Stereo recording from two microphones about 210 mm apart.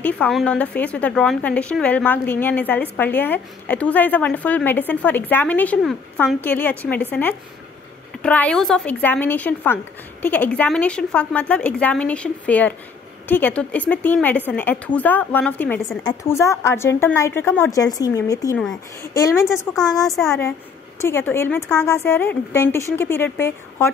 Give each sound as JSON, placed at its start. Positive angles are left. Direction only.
{"t": 0.0, "sound": "a woman's voice", "side_deg": 5}
{"t": 16.0, "sound": "a woman's voice", "side_deg": 15}
{"t": 20.1, "sound": "speech", "side_deg": 0}
{"t": 21.0, "sound": "a woman's voice", "side_deg": 10}